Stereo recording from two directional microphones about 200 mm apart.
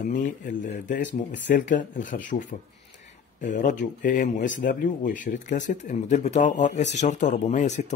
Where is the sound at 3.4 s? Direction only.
40° left (ahead or behind).